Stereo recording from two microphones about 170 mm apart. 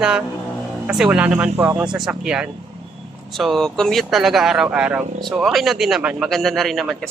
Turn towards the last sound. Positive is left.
turn(degrees=0)  # may be behind; listen again after turning